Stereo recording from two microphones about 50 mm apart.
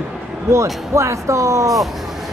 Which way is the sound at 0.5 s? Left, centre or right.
Right.